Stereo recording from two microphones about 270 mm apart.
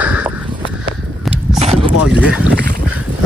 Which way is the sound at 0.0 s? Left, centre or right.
Centre.